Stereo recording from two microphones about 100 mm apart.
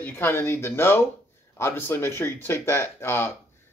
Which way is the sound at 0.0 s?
25° left (ahead or behind).